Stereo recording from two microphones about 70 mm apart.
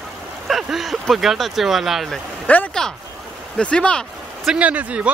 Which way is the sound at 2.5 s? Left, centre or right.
Left.